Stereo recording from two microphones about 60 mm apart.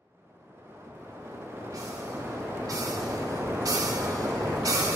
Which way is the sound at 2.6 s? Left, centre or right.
Right.